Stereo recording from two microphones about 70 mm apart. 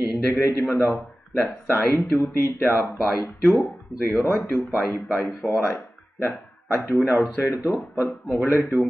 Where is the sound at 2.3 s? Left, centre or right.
Left.